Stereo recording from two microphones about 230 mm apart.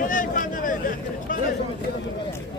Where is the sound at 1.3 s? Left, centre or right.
Left.